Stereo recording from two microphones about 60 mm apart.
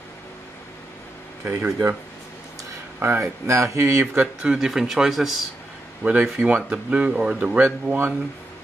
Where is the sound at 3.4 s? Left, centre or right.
Right.